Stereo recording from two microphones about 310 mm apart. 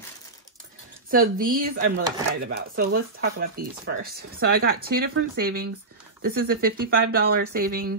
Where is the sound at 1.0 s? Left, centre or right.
Right.